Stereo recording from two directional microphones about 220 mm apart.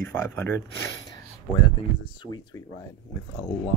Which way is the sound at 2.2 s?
20° left (ahead or behind).